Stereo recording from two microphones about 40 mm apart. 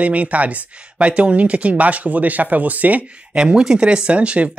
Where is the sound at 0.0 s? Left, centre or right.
Right.